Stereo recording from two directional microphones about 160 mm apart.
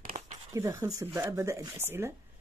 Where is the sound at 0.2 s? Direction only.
40° right (ahead or behind).